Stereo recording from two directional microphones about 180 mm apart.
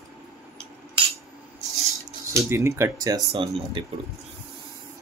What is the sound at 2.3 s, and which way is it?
Speech, 15° right (ahead or behind).